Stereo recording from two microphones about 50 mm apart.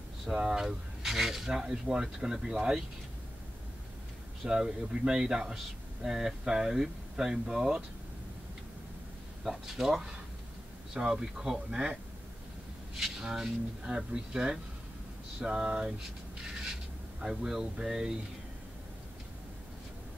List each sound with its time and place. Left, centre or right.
0.3 s cutlery: centre
4.5 s cutlery: centre
9.4 s cutlery: centre
12.9 s cutlery: centre
17.2 s cutlery: centre